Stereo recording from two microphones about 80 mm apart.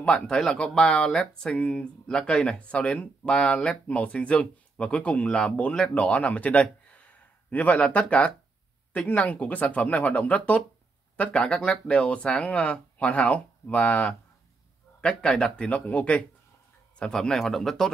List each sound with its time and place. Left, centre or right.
0.0 s speech: centre
2.0 s speech: centre
17.0 s speech: centre